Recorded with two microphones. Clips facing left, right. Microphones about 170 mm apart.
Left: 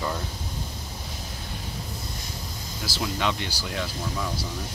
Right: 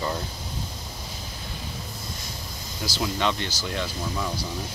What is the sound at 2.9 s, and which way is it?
Speech, 5° left (ahead or behind).